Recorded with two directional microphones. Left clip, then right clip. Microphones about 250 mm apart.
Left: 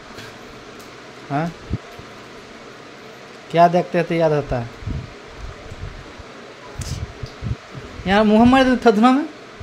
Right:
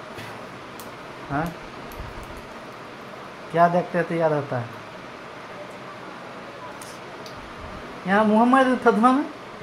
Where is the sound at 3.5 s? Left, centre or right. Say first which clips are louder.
Left 5 dB; left.